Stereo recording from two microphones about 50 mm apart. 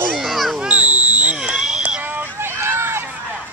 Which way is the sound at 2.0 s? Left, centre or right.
Right.